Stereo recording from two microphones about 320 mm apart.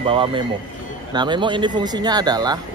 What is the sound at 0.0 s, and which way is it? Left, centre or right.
Speech, centre.